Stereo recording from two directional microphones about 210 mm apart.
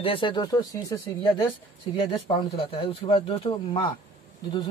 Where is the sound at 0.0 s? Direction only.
25° left (ahead or behind).